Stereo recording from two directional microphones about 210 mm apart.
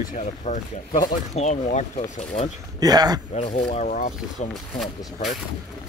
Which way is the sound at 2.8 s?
20° right (ahead or behind).